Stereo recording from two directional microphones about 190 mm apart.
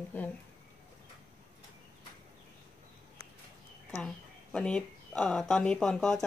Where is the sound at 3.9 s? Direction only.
5° left (ahead or behind).